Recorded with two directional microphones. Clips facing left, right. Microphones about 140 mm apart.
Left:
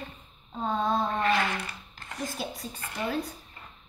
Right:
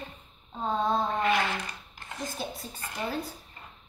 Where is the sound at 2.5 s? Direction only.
30° right (ahead or behind).